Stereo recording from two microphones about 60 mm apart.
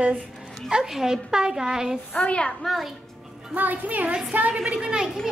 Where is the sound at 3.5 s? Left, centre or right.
Right; by 5.3 s centre.